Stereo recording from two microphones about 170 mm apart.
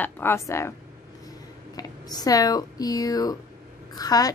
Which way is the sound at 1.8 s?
20° left (ahead or behind).